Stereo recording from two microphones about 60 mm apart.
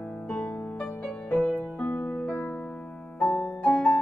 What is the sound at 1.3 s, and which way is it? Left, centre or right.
Music, left.